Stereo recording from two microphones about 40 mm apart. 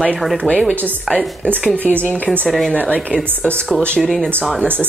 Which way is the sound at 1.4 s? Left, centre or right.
Left.